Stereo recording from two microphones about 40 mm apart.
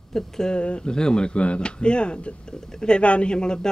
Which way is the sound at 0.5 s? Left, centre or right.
Left.